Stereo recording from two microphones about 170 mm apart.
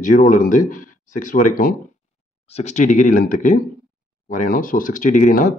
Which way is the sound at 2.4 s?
40° left (ahead or behind).